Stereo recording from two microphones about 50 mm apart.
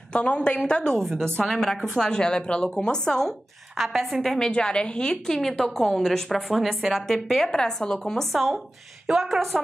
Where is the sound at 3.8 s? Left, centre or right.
Centre.